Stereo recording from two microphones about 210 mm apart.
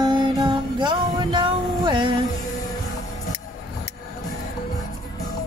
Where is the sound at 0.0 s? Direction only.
20° right (ahead or behind).